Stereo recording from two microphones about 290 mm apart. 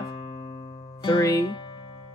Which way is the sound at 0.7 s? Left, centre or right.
Centre.